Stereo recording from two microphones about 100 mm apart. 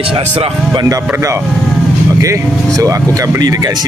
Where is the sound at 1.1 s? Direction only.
30° right (ahead or behind).